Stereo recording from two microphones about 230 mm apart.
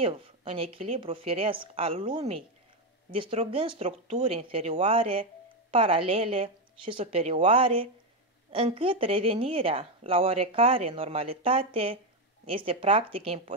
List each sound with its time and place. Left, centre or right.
0.0 s speech: right